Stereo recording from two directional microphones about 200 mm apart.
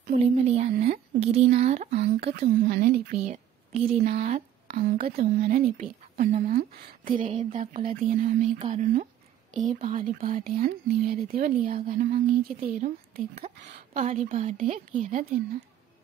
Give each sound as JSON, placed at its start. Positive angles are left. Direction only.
{"t": 0.0, "sound": "speech", "side_deg": -35}
{"t": 2.4, "sound": "speech", "side_deg": -45}
{"t": 3.3, "sound": "a woman's voice", "side_deg": -35}